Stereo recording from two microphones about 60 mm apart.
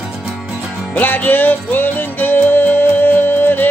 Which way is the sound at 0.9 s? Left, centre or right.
Left.